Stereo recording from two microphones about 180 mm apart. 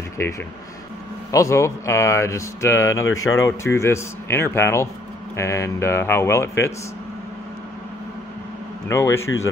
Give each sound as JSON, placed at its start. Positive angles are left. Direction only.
{"t": 0.2, "sound": "speech", "side_deg": 15}
{"t": 8.8, "sound": "speech", "side_deg": 15}